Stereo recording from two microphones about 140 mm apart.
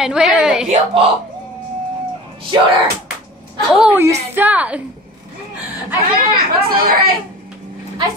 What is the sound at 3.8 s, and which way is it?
A woman's voice, 10° right (ahead or behind).